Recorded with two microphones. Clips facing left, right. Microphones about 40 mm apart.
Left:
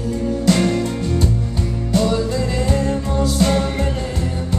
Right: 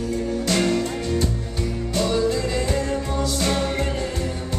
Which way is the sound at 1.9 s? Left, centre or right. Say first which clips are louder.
Left 3 dB; centre.